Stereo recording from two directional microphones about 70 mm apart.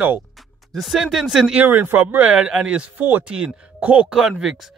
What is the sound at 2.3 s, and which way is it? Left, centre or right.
Speech, centre.